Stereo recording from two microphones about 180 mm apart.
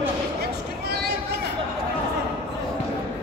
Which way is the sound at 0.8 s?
65° right (ahead or behind).